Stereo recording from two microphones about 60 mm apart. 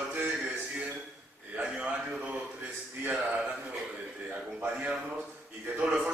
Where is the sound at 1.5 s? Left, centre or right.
Right.